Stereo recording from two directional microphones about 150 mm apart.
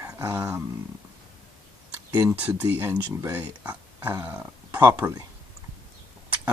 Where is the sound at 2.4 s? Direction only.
10° right (ahead or behind).